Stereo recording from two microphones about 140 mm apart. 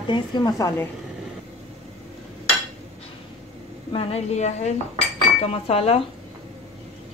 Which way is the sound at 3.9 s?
50° left (ahead or behind).